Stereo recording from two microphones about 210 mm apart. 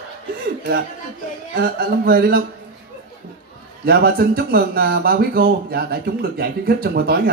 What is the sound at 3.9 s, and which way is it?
A woman's voice, 45° right (ahead or behind).